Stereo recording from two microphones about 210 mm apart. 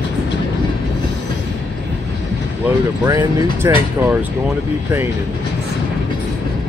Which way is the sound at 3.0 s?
20° right (ahead or behind).